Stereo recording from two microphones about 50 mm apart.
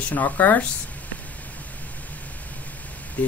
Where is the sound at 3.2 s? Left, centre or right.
Left.